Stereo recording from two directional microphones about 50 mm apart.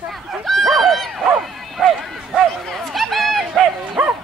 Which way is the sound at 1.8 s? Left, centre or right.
Centre.